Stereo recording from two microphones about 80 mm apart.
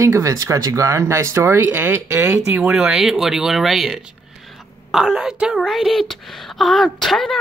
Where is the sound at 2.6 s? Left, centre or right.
Centre.